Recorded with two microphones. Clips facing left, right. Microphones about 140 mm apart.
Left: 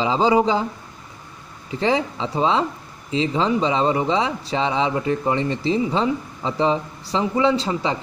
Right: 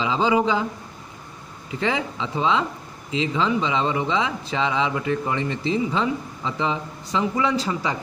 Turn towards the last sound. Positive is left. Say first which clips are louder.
# left 3 dB
turn(degrees=30)  # may be behind; listen again after turning